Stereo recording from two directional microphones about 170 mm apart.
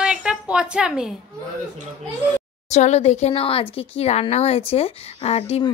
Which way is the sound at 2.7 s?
40° left (ahead or behind).